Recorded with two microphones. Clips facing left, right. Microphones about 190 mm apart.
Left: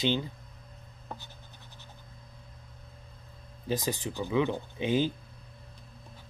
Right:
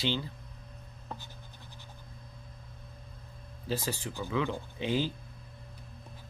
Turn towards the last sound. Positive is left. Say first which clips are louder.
# left 3 dB
turn(degrees=20)  # may be behind; listen again after turning